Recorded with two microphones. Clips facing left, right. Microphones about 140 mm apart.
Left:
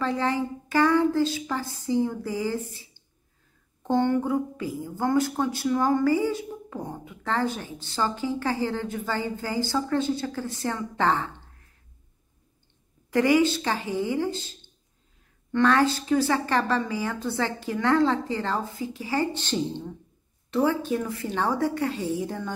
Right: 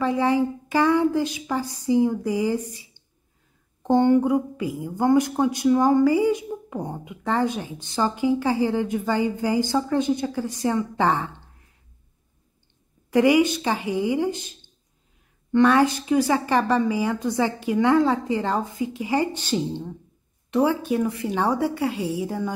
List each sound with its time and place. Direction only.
0.0 s a woman's voice: 15° right (ahead or behind)
13.1 s a woman's voice: 15° right (ahead or behind)